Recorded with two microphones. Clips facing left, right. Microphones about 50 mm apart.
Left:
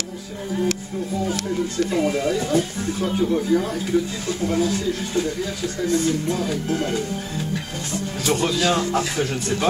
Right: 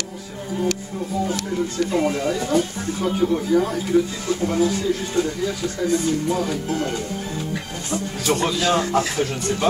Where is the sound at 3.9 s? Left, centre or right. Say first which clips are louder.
Right 3 dB; centre.